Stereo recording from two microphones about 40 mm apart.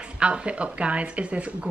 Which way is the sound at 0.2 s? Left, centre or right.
Right.